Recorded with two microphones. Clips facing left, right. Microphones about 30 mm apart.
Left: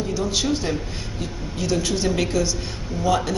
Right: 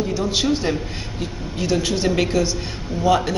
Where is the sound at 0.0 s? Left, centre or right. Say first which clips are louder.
Right 3 dB; centre.